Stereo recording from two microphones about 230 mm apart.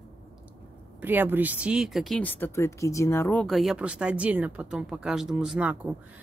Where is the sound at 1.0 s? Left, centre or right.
Centre.